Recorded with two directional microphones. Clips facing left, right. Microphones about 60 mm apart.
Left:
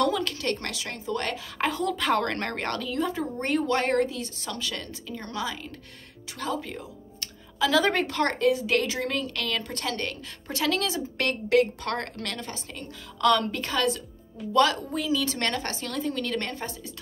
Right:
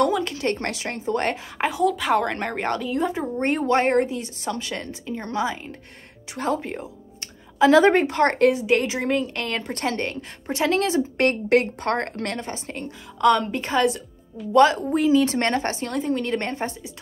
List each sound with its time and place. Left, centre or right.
0.0 s a woman's voice: right
1.6 s a woman's voice: centre; by 16.7 s right